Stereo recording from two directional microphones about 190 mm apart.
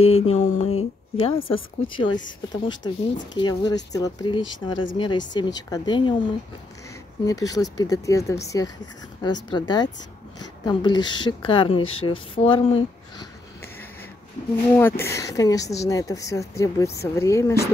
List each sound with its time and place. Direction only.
0.0 s a woman's voice: 30° left (ahead or behind)
7.2 s a woman's voice: 20° left (ahead or behind)
14.8 s a woman's voice: 10° left (ahead or behind)